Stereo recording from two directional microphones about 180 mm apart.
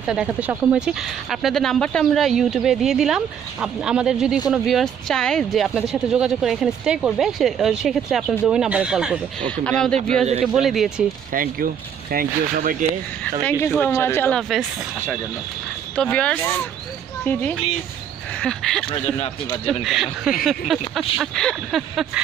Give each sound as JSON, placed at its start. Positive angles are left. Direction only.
{"t": 0.0, "sound": "speech", "side_deg": -5}
{"t": 11.3, "sound": "speech", "side_deg": -55}
{"t": 13.4, "sound": "speech", "side_deg": 10}
{"t": 16.0, "sound": "speech", "side_deg": 5}
{"t": 18.9, "sound": "speech", "side_deg": 35}
{"t": 19.8, "sound": "speech", "side_deg": 0}